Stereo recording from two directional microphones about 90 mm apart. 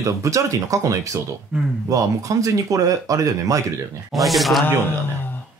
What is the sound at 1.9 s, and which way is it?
Speech, 40° right (ahead or behind).